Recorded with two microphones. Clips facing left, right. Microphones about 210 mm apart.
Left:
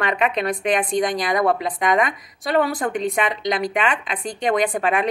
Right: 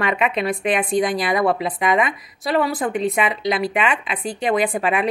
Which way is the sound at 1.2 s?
45° left (ahead or behind).